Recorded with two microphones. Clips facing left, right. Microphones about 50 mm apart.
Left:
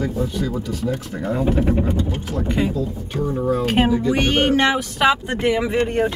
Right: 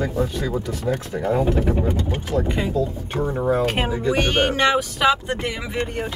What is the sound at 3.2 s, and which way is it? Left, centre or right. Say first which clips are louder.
Speech: even; right.